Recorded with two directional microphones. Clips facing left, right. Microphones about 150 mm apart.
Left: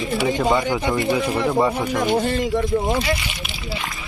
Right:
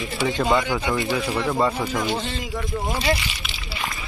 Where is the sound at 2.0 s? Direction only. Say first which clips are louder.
Left 7 dB; 50° left (ahead or behind).